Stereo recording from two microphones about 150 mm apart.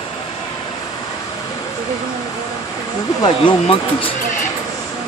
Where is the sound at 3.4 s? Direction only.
35° left (ahead or behind).